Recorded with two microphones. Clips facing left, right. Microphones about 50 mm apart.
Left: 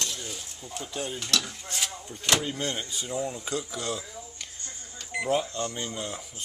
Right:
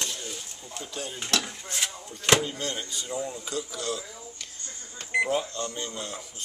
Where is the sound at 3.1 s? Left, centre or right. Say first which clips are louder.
Left 1 dB; centre.